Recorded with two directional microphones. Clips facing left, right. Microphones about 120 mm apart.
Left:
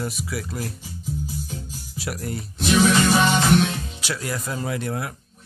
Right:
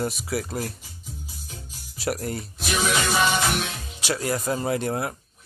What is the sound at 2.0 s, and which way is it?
Speech, 40° right (ahead or behind).